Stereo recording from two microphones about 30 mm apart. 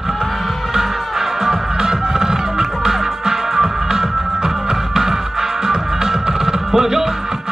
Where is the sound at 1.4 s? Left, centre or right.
Centre.